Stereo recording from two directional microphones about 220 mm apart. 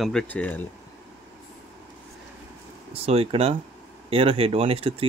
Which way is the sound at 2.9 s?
25° right (ahead or behind).